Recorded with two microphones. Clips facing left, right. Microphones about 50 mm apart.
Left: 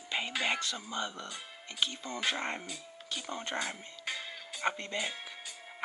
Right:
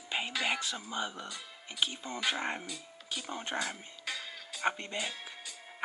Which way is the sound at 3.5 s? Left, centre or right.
Left.